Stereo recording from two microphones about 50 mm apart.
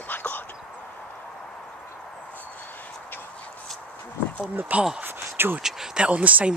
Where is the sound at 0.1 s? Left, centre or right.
Left.